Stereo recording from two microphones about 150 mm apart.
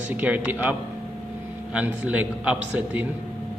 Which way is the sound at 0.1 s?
10° right (ahead or behind).